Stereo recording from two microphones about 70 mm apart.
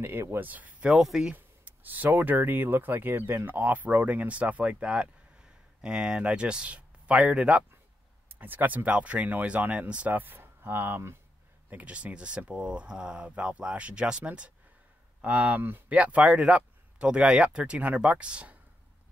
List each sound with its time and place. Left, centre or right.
0.0 s speech: right
0.5 s speech: right
0.8 s speech: centre
1.3 s speech: right
11.7 s speech: centre